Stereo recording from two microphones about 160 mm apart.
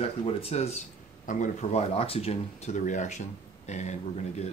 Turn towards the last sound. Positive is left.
turn(degrees=45)  # may be behind; listen again after turning